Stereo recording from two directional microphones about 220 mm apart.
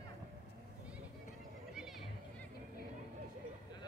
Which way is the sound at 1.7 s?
Centre (ahead or behind).